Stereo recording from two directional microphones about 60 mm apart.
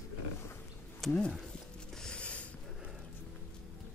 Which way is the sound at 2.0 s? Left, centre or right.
Centre.